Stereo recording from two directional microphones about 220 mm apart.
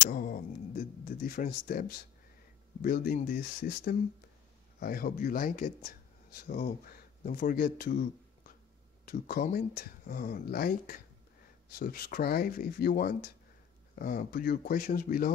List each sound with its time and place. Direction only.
0.1 s speech: 40° left (ahead or behind)